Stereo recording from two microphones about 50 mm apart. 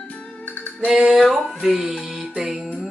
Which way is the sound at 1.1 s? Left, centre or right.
Centre.